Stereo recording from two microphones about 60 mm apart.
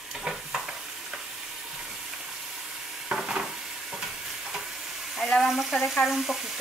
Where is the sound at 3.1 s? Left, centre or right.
Centre.